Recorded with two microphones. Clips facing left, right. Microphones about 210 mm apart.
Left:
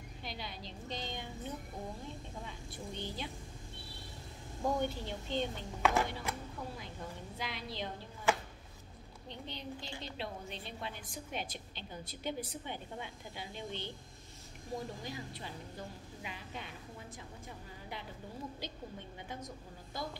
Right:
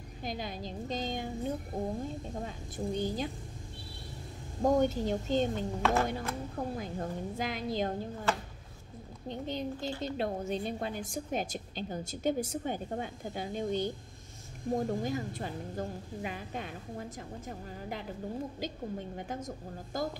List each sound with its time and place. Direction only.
0.2 s a woman's voice: 45° right (ahead or behind)
4.6 s a woman's voice: 45° right (ahead or behind)
9.3 s a woman's voice: 45° right (ahead or behind)
19.1 s a woman's voice: 45° right (ahead or behind)